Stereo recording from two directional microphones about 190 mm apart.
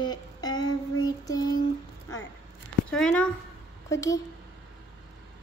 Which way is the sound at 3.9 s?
15° left (ahead or behind).